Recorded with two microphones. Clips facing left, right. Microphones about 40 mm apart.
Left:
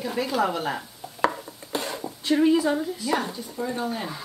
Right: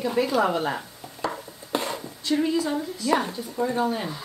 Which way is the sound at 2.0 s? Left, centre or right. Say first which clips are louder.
Left 7 dB; left.